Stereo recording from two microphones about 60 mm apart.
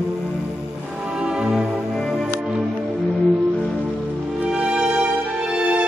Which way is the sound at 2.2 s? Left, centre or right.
Centre.